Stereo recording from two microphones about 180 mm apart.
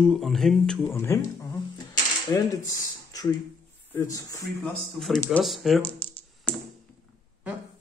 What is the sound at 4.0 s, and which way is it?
Typewriter, 20° left (ahead or behind).